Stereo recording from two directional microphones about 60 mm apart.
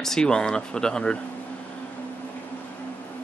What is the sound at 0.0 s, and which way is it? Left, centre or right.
Speech, centre.